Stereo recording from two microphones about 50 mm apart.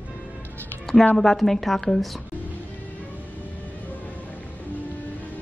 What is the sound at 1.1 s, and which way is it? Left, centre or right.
Speech, centre.